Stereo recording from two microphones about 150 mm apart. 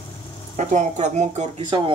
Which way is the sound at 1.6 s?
30° right (ahead or behind).